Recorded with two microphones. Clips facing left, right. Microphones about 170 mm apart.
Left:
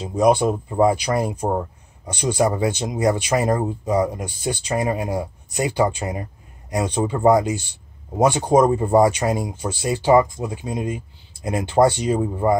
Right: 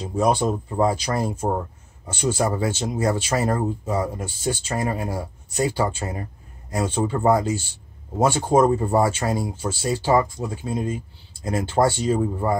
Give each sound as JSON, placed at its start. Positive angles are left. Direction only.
{"t": 0.0, "sound": "speech", "side_deg": 15}